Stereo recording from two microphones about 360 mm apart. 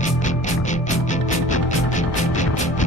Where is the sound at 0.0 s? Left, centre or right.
Centre.